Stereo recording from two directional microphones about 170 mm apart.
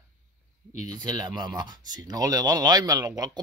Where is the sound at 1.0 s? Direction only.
25° right (ahead or behind).